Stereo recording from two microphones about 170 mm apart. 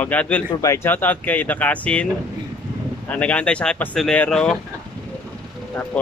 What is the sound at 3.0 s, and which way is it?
Speech, 5° left (ahead or behind).